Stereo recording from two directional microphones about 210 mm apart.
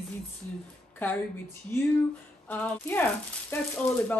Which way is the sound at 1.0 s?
10° left (ahead or behind).